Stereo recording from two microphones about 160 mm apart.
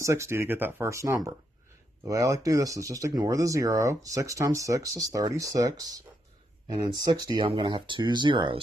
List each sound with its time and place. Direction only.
0.0 s speech: 20° right (ahead or behind)